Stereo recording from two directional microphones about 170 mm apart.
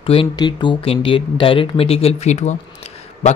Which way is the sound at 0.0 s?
30° left (ahead or behind).